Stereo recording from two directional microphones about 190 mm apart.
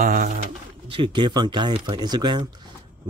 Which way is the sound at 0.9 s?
25° right (ahead or behind).